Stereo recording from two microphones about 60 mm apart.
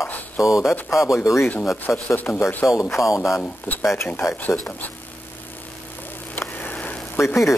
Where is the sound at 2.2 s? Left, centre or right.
Left.